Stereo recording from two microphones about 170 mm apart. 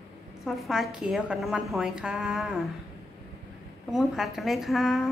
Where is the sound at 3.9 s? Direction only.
5° right (ahead or behind).